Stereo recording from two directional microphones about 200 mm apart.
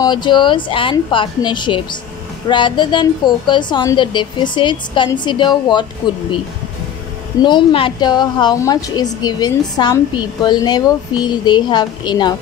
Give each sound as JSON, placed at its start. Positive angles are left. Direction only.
{"t": 0.0, "sound": "a woman's voice", "side_deg": 25}
{"t": 7.4, "sound": "a woman's voice", "side_deg": 25}